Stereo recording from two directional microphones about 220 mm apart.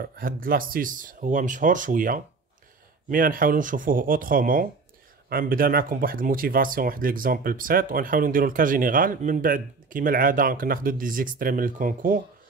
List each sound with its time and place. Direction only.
0.0 s speech: 40° right (ahead or behind)